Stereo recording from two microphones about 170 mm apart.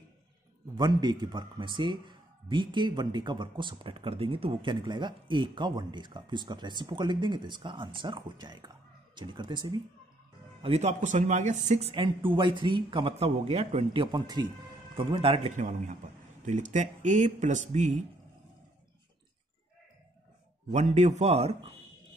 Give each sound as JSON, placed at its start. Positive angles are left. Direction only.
{"t": 0.7, "sound": "a man's voice", "side_deg": -25}
{"t": 10.6, "sound": "speech", "side_deg": -40}
{"t": 16.4, "sound": "speech", "side_deg": -45}
{"t": 20.7, "sound": "speech", "side_deg": -40}